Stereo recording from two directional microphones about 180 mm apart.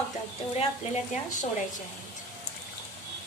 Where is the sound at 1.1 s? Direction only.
45° left (ahead or behind).